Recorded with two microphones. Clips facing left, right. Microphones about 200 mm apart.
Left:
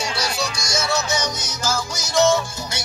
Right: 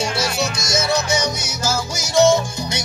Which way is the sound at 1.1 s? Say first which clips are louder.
Right 3 dB; 10° right (ahead or behind).